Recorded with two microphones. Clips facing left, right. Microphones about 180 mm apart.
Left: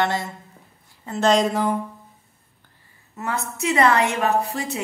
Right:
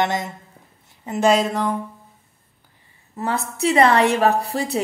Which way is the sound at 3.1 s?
30° right (ahead or behind).